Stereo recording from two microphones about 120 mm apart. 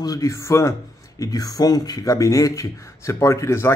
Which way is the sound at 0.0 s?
30° left (ahead or behind).